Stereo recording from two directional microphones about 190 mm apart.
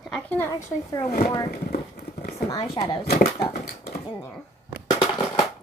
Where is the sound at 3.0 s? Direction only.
55° left (ahead or behind).